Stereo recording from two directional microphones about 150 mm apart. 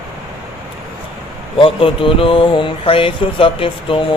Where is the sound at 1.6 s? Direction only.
35° left (ahead or behind).